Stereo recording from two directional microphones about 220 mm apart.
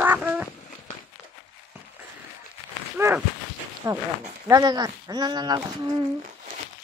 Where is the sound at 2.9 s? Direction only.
10° right (ahead or behind).